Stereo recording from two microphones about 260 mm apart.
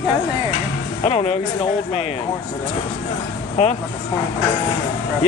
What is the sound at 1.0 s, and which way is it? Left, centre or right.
Speech, left.